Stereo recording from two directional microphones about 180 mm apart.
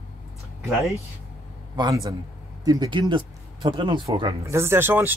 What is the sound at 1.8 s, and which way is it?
Speech, 20° right (ahead or behind).